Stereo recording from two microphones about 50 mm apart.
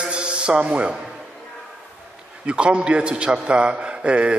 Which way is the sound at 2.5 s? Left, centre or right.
Right.